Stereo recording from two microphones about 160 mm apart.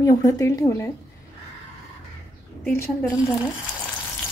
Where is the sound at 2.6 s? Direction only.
15° left (ahead or behind).